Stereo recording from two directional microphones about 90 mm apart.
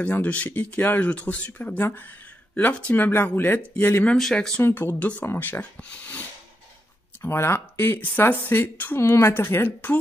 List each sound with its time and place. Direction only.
0.0 s speech: 15° left (ahead or behind)
1.8 s speech: 25° left (ahead or behind)
4.2 s speech: 5° left (ahead or behind)
4.6 s speech: 25° left (ahead or behind)
7.2 s speech: 30° left (ahead or behind)